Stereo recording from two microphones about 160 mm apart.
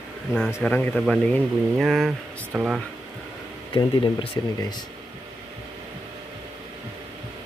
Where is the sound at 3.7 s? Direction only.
30° left (ahead or behind).